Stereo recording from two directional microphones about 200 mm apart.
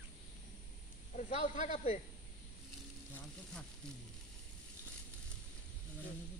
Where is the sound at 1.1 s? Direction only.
40° left (ahead or behind).